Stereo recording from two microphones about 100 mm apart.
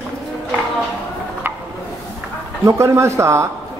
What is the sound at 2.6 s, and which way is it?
Speech, 30° right (ahead or behind).